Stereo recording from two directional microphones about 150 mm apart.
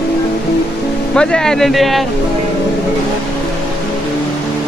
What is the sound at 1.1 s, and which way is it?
Speech, 5° left (ahead or behind).